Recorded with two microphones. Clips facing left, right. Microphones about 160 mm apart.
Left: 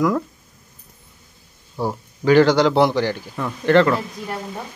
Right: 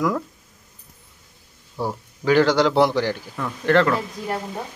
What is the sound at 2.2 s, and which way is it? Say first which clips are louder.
A man's voice: left 3 dB; 5° right (ahead or behind).